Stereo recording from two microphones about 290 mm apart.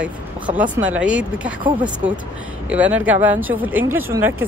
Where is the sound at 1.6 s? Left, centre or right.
Centre.